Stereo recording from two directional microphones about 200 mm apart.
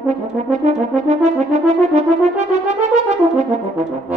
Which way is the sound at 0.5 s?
35° right (ahead or behind).